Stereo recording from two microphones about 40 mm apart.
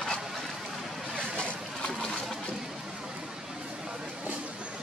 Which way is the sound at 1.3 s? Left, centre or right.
Centre.